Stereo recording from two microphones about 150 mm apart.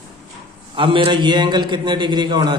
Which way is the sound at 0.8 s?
35° right (ahead or behind).